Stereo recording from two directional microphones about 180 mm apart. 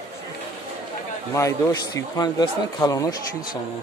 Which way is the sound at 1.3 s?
15° left (ahead or behind).